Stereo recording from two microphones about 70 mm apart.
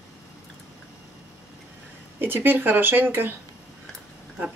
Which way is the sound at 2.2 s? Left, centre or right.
Right.